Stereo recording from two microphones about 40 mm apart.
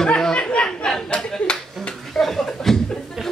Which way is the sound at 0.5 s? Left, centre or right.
Left.